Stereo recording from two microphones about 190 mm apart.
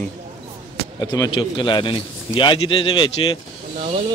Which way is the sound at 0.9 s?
20° left (ahead or behind).